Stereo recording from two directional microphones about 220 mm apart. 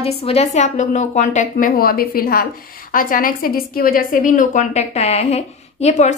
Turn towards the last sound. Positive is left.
turn(degrees=30)  # may be behind; listen again after turning